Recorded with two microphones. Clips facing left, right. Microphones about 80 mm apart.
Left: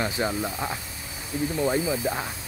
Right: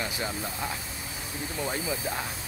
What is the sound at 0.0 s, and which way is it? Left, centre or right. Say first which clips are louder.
Speech: left 6 dB; left.